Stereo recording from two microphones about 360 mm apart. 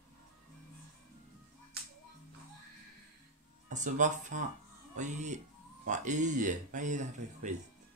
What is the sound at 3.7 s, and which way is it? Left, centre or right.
Speech, right.